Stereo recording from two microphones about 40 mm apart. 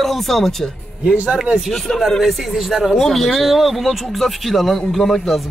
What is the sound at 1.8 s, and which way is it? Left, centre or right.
Speech, centre.